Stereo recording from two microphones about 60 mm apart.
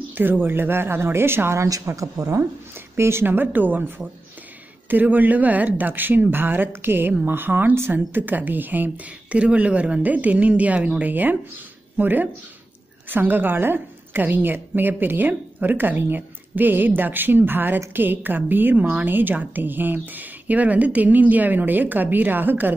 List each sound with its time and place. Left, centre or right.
0.1 s a woman's voice: right
1.6 s speech: right
3.0 s a woman's voice: right
4.8 s a woman's voice: right